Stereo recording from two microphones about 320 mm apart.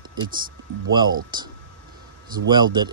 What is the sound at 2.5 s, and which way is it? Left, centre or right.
Speech, centre.